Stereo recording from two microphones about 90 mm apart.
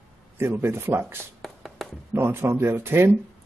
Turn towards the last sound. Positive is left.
turn(degrees=-30)  # may be behind; listen again after turning